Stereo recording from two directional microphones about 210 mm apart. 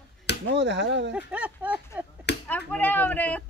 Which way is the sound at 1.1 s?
5° right (ahead or behind).